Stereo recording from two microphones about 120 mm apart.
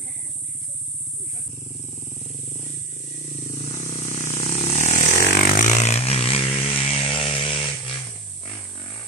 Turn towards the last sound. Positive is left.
turn(degrees=45)  # may be behind; listen again after turning